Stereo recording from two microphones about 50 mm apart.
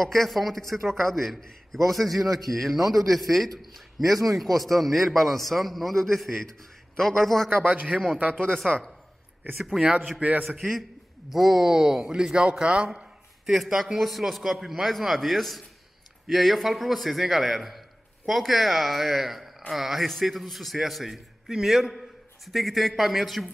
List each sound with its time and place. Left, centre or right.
0.0 s a man's voice: centre
7.6 s speech: right
8.6 s a man's voice: centre
11.2 s a man's voice: centre; by 12.9 s right
13.5 s a man's voice: centre